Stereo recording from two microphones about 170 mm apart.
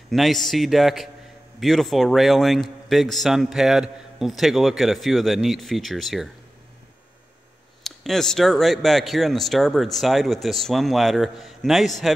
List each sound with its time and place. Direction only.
0.1 s speech: centre (ahead or behind)
7.8 s speech: centre (ahead or behind)